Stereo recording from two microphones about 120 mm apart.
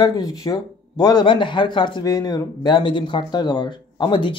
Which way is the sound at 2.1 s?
25° left (ahead or behind).